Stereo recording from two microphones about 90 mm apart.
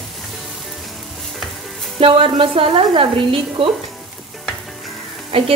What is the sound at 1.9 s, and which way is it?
Sizzle, 85° right.